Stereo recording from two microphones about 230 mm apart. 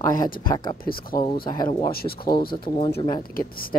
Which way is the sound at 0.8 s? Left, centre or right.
Left.